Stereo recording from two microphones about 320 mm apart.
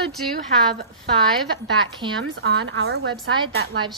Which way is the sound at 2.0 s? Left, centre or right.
Centre.